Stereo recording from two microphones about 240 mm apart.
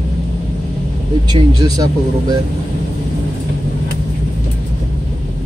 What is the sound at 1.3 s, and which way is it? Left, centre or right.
Speech, centre.